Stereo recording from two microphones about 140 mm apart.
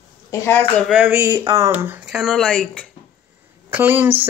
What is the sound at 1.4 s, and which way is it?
Speech, 20° right (ahead or behind).